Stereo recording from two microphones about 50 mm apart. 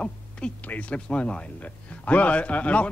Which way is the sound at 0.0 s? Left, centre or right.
Left.